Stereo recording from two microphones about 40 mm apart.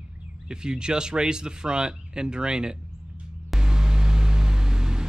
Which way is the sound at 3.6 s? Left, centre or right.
Centre.